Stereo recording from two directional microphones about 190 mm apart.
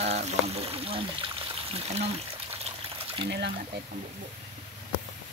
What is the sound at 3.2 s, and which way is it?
Speech, 60° right (ahead or behind).